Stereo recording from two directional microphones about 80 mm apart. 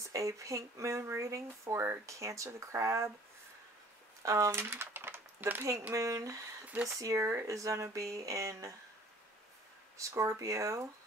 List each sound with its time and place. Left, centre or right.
0.0 s speech: right
4.2 s speech: right
9.9 s speech: right